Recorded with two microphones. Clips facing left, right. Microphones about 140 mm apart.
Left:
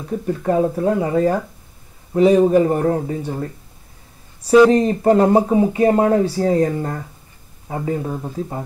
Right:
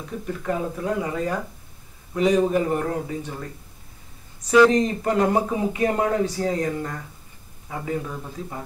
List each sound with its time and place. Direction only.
0.3 s speech: 35° left (ahead or behind)
4.6 s speech: 35° left (ahead or behind)